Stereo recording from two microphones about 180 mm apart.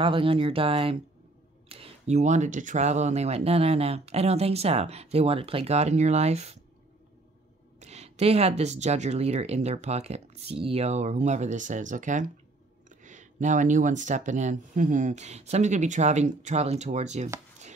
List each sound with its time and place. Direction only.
0.0 s speech: 30° right (ahead or behind)
7.8 s speech: 35° right (ahead or behind)